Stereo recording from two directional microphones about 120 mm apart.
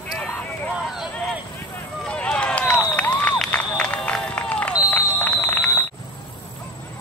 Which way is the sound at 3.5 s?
10° left (ahead or behind).